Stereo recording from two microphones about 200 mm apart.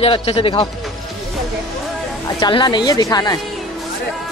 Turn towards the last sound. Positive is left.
turn(degrees=20)  # may be behind; listen again after turning